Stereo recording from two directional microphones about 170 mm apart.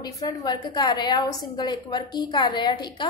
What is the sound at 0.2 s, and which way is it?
A woman's voice, 20° left (ahead or behind).